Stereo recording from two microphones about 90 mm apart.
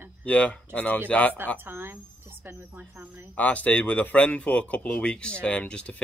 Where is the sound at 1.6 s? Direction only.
25° right (ahead or behind).